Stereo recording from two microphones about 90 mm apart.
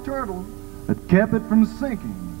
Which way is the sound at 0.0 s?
10° right (ahead or behind).